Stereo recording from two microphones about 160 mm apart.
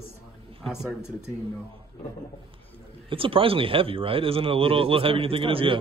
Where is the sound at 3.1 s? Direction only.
35° right (ahead or behind).